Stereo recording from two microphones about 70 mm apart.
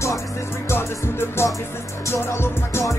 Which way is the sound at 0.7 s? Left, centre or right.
Left.